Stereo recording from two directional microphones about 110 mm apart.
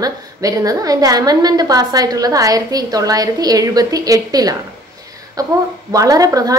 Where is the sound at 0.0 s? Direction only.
30° right (ahead or behind).